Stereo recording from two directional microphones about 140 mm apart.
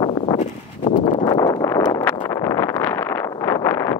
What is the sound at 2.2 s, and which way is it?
Vehicle, 20° left (ahead or behind).